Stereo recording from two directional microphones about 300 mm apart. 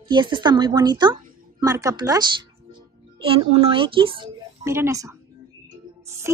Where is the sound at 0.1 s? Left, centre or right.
Centre.